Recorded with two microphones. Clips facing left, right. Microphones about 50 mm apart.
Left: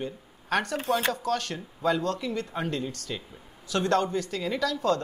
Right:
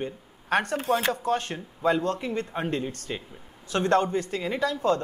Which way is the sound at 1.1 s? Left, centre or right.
Right.